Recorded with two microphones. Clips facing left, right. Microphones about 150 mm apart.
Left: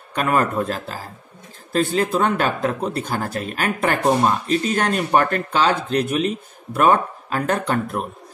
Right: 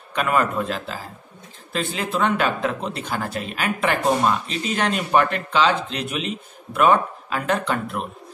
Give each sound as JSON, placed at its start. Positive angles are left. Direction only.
{"t": 0.1, "sound": "speech", "side_deg": 40}